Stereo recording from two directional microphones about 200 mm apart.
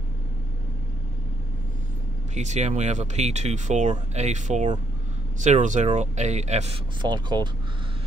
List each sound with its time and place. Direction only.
2.3 s speech: 35° right (ahead or behind)